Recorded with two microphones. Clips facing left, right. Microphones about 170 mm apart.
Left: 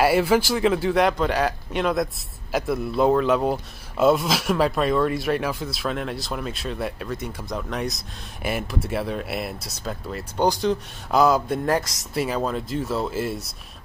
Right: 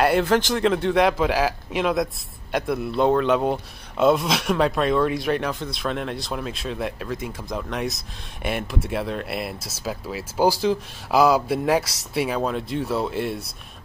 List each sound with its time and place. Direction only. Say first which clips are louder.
0.0 s speech: even; 5° left (ahead or behind)